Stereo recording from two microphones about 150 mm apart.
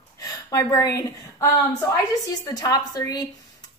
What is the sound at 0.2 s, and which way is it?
A woman's voice, 20° left (ahead or behind).